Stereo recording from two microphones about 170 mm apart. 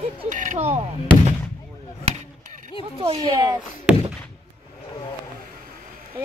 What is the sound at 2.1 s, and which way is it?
Chop, 50° right (ahead or behind).